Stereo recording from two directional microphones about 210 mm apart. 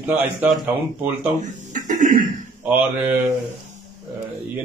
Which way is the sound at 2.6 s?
10° right (ahead or behind).